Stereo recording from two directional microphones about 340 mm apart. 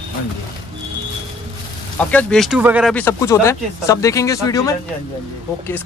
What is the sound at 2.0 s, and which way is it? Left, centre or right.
Speech, centre.